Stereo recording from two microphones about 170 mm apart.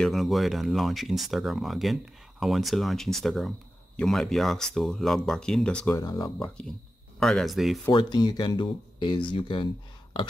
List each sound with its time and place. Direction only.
0.0 s speech: centre (ahead or behind)
5.9 s speech: 20° left (ahead or behind)
6.4 s speech: 5° left (ahead or behind)
7.9 s speech: 25° left (ahead or behind)